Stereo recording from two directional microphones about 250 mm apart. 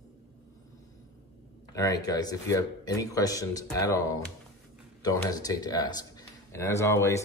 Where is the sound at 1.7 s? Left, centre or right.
Centre.